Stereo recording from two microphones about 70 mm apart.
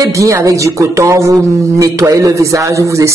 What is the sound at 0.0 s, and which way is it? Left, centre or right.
Speech, right.